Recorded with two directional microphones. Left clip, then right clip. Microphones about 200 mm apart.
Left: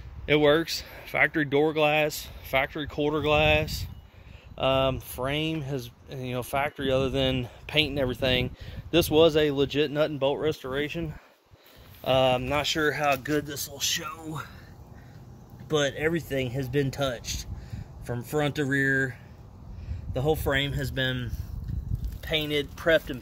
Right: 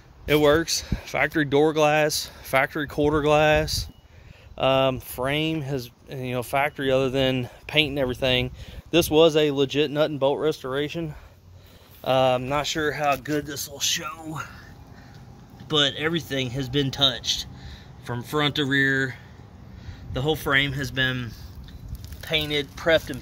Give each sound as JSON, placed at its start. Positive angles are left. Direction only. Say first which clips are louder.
{"t": 0.3, "sound": "speech", "louder": "right 2 dB", "side_deg": -5}
{"t": 7.6, "sound": "speech", "louder": "right 3 dB", "side_deg": -15}
{"t": 15.7, "sound": "speech", "louder": "right 4 dB", "side_deg": 5}
{"t": 16.6, "sound": "speech", "louder": "right 3 dB", "side_deg": -40}
{"t": 16.9, "sound": "speech", "louder": "right 8 dB", "side_deg": 10}
{"t": 20.4, "sound": "speech", "louder": "right 5 dB", "side_deg": 5}
{"t": 22.2, "sound": "speech", "louder": "right 3 dB", "side_deg": -5}